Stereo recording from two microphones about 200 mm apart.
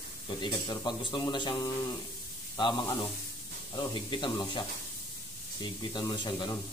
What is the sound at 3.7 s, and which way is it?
Speech, 25° left (ahead or behind).